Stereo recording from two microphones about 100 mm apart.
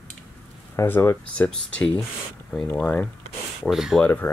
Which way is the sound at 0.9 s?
25° left (ahead or behind).